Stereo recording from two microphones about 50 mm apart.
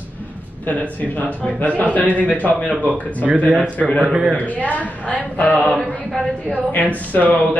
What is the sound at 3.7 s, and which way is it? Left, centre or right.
A woman's voice, left.